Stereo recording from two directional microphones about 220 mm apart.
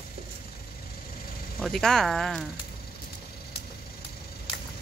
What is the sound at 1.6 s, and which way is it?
Speech, centre (ahead or behind).